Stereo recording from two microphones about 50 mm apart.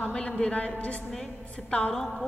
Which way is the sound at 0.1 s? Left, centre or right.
Left.